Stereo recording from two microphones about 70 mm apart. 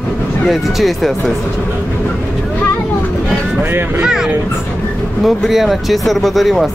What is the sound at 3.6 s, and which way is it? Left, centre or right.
Speech, right.